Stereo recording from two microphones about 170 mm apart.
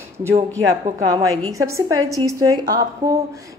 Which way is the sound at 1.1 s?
20° right (ahead or behind).